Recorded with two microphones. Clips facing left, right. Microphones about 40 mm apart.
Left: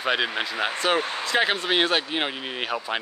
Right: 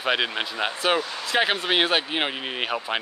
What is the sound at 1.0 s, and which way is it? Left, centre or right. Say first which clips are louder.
Speech: left 2 dB; left.